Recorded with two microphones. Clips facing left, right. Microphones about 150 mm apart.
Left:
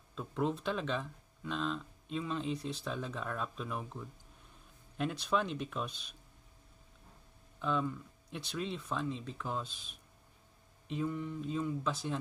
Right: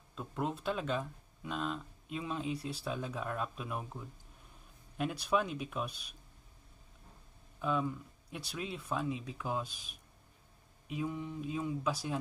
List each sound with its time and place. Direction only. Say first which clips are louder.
0.1 s speech: left 3 dB; 5° right (ahead or behind)
7.5 s speech: even; 10° right (ahead or behind)